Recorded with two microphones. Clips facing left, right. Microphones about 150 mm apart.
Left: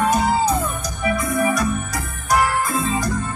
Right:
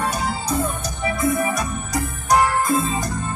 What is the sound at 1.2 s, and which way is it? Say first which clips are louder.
Music: even; 25° right (ahead or behind).